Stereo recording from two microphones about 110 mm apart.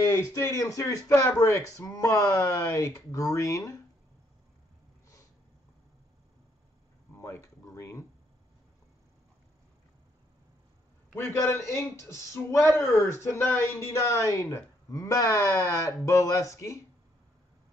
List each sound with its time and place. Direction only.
0.1 s speech: 25° left (ahead or behind)
7.2 s a sound: 25° left (ahead or behind)
11.1 s speech: 25° left (ahead or behind)